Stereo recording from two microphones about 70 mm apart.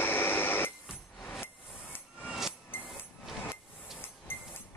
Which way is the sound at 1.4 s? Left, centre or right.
Left.